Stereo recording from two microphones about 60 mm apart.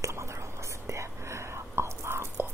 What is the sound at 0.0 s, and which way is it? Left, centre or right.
Whispering, right.